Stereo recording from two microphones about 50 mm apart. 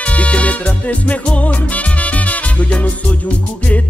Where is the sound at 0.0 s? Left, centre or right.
Left.